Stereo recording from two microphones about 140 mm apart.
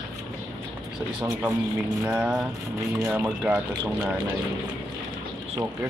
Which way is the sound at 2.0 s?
5° right (ahead or behind).